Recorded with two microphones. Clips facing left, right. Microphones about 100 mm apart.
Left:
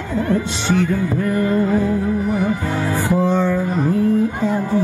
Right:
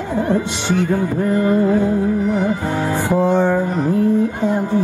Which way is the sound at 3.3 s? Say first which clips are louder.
Right 2 dB; 55° right (ahead or behind).